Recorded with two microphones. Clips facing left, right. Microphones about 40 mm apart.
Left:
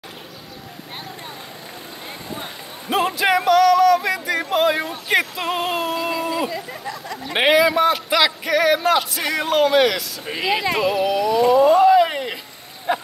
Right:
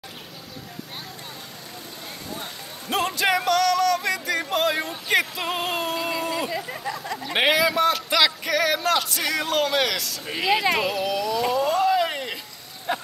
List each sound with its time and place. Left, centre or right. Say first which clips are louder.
2.9 s music: left 4 dB; centre
6.2 s a sound: left 4 dB; centre
6.7 s chatter: even; centre
7.2 s a man's voice: left 5 dB; centre
9.2 s a man's voice: left 3 dB; left
9.5 s a man's voice: left 9 dB; centre
12.9 s a sound: left 5 dB; centre